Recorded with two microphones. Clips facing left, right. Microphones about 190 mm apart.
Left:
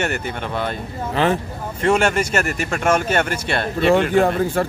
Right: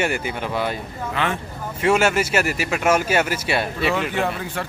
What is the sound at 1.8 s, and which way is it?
Speech, 5° right (ahead or behind).